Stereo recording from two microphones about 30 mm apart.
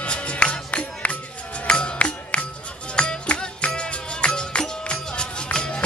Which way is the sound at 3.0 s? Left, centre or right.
Left.